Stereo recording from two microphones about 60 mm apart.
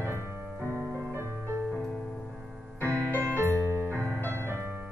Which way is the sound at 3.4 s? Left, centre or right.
Right.